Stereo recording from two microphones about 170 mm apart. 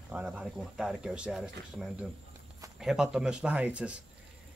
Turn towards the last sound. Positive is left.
turn(degrees=-5)  # may be behind; listen again after turning